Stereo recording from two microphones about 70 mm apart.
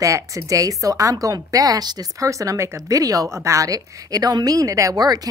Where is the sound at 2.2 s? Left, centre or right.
Right.